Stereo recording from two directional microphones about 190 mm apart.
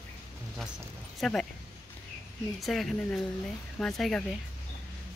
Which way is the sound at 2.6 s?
Centre (ahead or behind).